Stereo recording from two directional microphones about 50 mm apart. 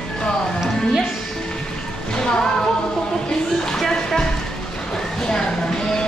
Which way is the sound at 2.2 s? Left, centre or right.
Centre.